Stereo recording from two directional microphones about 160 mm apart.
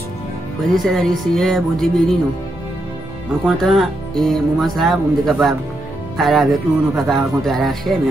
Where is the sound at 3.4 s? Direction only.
Centre (ahead or behind).